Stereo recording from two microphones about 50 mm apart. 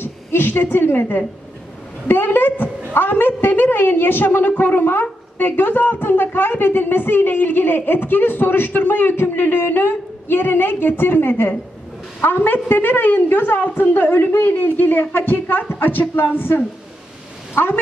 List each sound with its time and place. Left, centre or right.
0.0 s a woman's voice: left